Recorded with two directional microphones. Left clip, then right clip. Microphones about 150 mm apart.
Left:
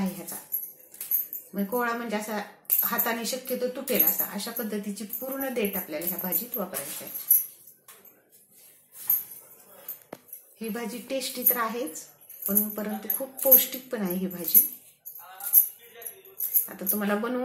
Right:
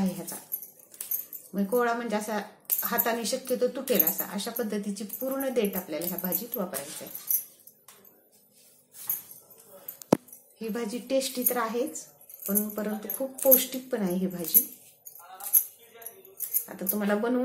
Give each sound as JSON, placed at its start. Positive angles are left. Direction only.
{"t": 0.0, "sound": "a woman's voice", "side_deg": -20}
{"t": 1.5, "sound": "a woman's voice", "side_deg": -25}
{"t": 10.6, "sound": "a woman's voice", "side_deg": -20}
{"t": 16.6, "sound": "a woman's voice", "side_deg": -15}